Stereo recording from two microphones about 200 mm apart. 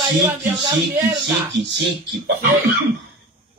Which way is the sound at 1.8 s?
60° right (ahead or behind).